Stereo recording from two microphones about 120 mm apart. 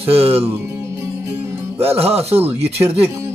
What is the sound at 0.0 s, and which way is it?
Music, 55° right (ahead or behind).